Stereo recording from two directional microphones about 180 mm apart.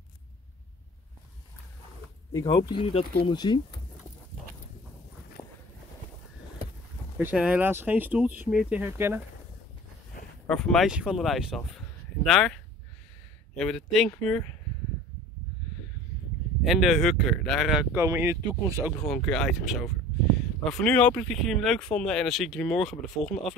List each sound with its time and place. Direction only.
2.4 s speech: 30° left (ahead or behind)
5.4 s walk: 20° left (ahead or behind)
7.2 s speech: 10° right (ahead or behind)
10.4 s speech: 5° left (ahead or behind)
13.6 s speech: centre (ahead or behind)
16.6 s speech: centre (ahead or behind)
17.9 s speech: 15° right (ahead or behind)
18.9 s speech: 5° left (ahead or behind)